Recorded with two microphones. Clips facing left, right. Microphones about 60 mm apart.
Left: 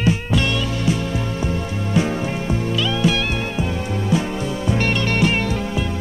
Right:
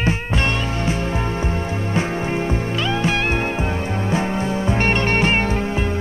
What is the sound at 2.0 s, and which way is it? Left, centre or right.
Music, right.